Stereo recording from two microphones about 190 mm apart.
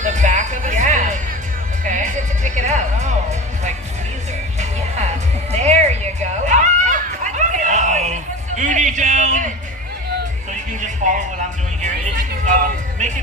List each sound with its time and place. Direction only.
0.0 s music: 40° right (ahead or behind)
4.6 s music: 35° right (ahead or behind)
10.8 s music: 40° right (ahead or behind)
12.4 s music: 40° right (ahead or behind)